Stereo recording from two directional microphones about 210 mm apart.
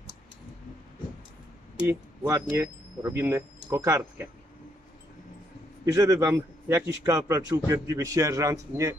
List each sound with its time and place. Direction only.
1.9 s speech: 10° right (ahead or behind)
5.9 s a man's voice: 15° right (ahead or behind)